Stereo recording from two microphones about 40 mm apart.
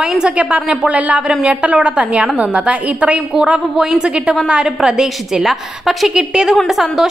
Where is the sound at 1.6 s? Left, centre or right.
Right.